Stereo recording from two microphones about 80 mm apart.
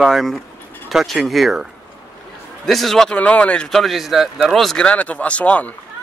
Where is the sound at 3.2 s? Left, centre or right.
Centre.